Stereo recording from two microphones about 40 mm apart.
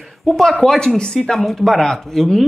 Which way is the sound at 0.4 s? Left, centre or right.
Centre.